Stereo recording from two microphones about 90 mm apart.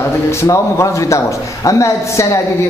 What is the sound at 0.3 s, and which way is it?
Speech, 30° left (ahead or behind).